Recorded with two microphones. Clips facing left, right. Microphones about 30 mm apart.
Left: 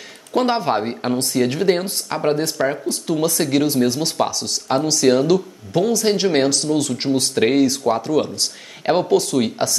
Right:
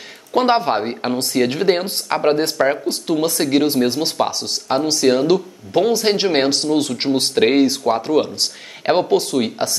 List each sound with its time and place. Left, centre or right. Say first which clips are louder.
0.3 s speech: right 2 dB; right
1.1 s speech: right 1 dB; right; by 5.3 s centre
5.3 s speech: right 1 dB; right
7.3 s speech: right 2 dB; right
9.4 s speech: even; centre